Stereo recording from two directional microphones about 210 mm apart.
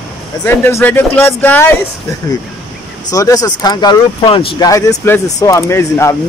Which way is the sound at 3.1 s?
15° left (ahead or behind).